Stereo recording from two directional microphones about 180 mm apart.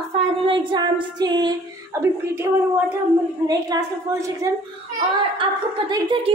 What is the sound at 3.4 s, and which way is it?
Speech, 20° right (ahead or behind).